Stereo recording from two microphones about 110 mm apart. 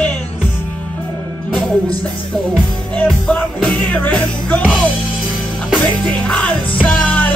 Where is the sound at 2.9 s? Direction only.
10° left (ahead or behind).